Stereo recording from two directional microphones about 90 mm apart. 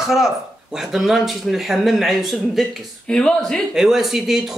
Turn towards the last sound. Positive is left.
turn(degrees=-5)  # may be behind; listen again after turning